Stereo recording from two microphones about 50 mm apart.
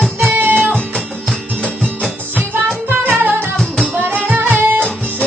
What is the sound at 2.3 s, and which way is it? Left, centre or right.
Music, right.